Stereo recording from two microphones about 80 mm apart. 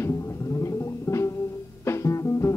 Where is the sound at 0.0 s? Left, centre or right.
Left.